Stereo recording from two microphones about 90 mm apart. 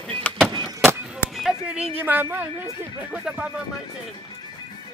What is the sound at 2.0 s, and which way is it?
Speech, 25° right (ahead or behind).